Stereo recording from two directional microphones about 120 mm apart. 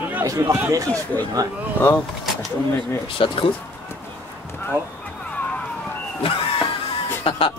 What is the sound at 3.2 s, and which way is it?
Speech, 45° left (ahead or behind).